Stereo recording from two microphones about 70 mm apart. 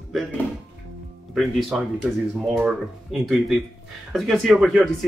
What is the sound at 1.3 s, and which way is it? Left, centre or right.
Speech, centre.